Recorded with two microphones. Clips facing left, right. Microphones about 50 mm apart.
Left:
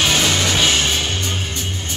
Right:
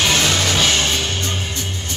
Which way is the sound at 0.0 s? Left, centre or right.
Centre.